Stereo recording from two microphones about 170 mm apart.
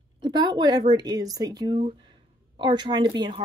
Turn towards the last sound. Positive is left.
turn(degrees=-25)  # may be behind; listen again after turning